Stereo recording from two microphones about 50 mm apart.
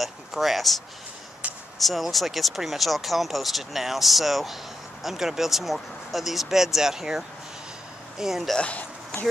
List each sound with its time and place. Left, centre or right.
0.0 s speech: centre
1.4 s a sound: right
1.8 s speech: centre
8.5 s speech: left